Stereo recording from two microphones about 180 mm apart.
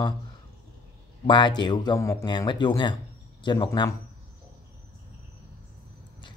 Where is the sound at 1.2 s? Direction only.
25° left (ahead or behind).